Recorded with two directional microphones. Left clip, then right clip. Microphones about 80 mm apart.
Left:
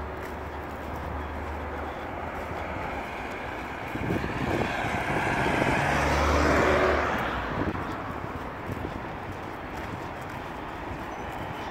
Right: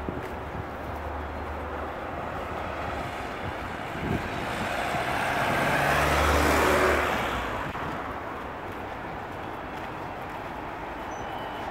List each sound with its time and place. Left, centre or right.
4.5 s vehicle: right
5.0 s vehicle: centre